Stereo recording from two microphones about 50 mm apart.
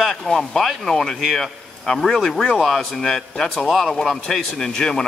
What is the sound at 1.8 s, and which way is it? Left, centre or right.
Speech, centre.